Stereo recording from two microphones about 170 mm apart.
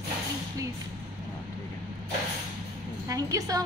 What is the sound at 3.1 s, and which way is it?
Speech, 20° right (ahead or behind).